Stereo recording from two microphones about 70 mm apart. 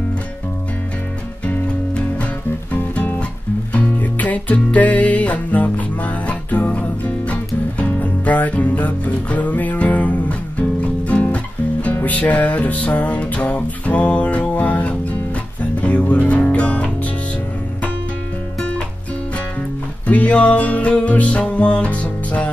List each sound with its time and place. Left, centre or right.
1.4 s music: centre
20.1 s music: centre